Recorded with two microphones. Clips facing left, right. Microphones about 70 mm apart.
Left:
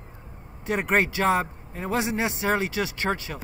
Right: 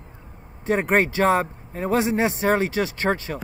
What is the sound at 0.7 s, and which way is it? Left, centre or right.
Speech, right.